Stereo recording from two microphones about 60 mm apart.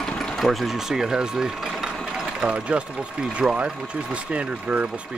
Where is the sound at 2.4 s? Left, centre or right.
Centre.